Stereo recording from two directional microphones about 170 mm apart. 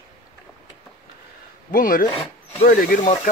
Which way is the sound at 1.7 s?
55° left (ahead or behind).